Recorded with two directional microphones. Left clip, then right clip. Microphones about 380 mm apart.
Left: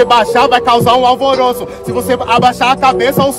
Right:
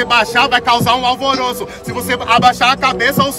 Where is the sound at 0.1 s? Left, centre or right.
Centre.